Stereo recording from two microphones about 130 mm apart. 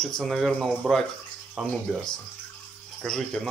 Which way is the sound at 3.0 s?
5° left (ahead or behind).